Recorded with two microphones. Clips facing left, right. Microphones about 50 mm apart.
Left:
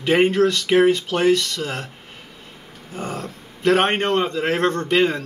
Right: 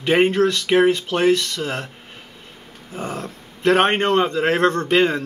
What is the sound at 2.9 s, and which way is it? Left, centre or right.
A man's voice, centre.